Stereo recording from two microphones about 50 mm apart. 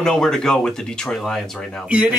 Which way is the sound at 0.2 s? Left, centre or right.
Centre.